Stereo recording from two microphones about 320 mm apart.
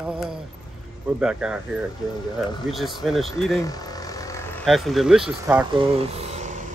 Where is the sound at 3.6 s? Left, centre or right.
Centre.